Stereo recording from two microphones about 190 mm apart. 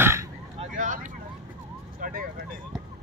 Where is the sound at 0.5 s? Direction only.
40° right (ahead or behind).